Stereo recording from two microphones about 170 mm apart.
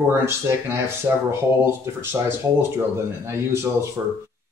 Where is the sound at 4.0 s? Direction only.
15° right (ahead or behind).